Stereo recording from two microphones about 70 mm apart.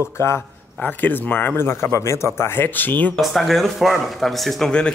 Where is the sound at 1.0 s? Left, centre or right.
Left.